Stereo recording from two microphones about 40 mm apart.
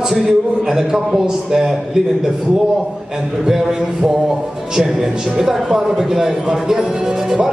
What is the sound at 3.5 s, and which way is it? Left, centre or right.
A man's voice, centre.